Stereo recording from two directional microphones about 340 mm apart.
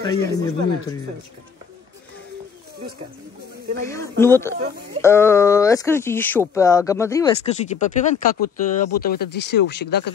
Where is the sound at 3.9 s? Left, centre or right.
Centre.